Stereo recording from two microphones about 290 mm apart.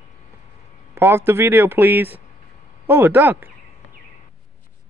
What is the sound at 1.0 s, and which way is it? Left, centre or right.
Speech, centre.